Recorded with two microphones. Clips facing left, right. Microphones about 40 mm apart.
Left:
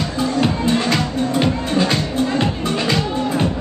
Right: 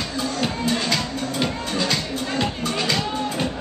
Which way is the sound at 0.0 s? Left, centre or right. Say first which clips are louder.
Left 6 dB; left.